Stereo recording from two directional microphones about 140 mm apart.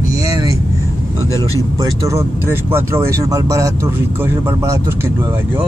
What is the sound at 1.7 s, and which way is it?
Speech, 20° right (ahead or behind).